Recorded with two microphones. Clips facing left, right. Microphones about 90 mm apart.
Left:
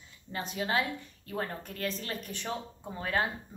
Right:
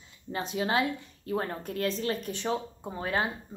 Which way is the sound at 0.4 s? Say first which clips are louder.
Right 3 dB; 30° right (ahead or behind).